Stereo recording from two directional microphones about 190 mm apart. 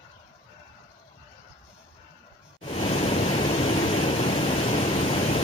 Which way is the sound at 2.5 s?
30° left (ahead or behind).